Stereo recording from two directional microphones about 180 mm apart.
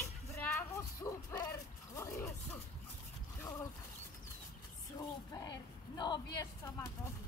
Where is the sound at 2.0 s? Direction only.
15° left (ahead or behind).